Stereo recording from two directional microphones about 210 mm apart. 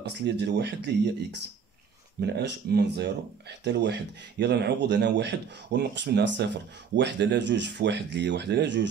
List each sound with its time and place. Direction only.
0.0 s speech: 55° right (ahead or behind)
2.1 s speech: 50° right (ahead or behind)